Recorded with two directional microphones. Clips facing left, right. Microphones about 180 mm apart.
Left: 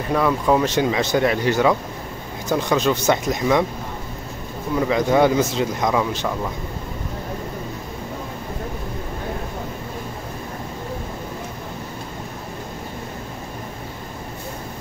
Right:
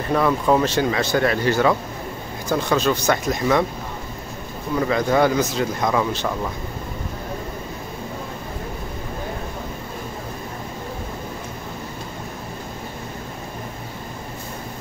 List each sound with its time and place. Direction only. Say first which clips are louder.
0.1 s speech: even; 5° left (ahead or behind)
0.7 s a man's voice: left 1 dB; 15° left (ahead or behind)
4.7 s a man's voice: left 1 dB; 15° left (ahead or behind)